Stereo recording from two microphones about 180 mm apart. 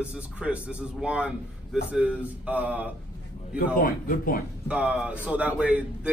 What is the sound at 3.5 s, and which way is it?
Speech, 50° left (ahead or behind).